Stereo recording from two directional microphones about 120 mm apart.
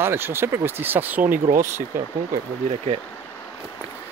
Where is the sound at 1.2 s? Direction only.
90° right.